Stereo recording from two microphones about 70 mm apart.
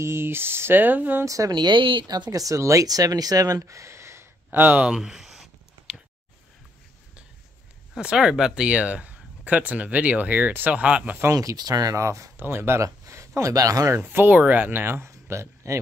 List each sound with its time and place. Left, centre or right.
0.0 s speech: right
1.2 s speech: right
1.5 s speech: right
4.5 s speech: right
4.8 s a sound: centre
8.0 s speech: centre
11.3 s speech: right
11.9 s speech: right
12.4 s speech: right
12.8 s speech: right
13.9 s speech: right
14.3 s speech: right